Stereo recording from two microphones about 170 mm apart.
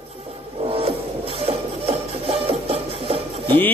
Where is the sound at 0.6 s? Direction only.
35° right (ahead or behind).